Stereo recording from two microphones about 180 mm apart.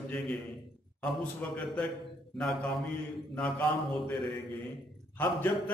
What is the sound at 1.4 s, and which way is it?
Speech, 10° left (ahead or behind).